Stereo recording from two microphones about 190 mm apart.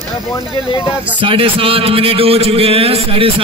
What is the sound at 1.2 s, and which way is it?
A man's voice, 30° right (ahead or behind).